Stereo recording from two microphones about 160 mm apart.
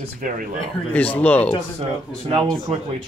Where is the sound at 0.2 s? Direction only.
60° right (ahead or behind).